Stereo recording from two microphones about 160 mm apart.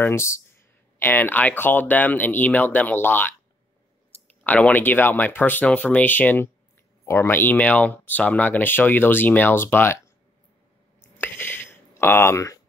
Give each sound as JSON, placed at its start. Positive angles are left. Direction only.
{"t": 0.0, "sound": "speech", "side_deg": 15}
{"t": 4.4, "sound": "speech", "side_deg": 10}
{"t": 11.1, "sound": "a sound", "side_deg": 15}